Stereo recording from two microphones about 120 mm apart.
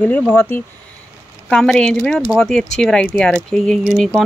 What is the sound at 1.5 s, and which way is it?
Speech, 5° left (ahead or behind).